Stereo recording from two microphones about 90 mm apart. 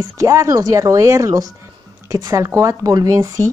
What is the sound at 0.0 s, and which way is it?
Speech, 35° right (ahead or behind).